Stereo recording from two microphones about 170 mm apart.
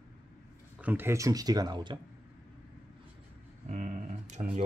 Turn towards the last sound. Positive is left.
turn(degrees=-45)  # may be behind; listen again after turning